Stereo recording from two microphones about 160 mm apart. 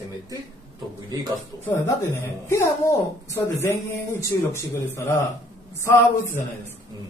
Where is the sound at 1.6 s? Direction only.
15° left (ahead or behind).